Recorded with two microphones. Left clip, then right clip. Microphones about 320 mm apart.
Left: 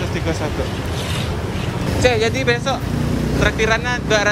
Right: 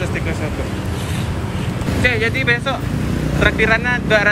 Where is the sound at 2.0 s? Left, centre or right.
Centre.